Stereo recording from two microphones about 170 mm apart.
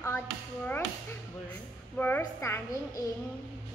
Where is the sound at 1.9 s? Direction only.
10° left (ahead or behind).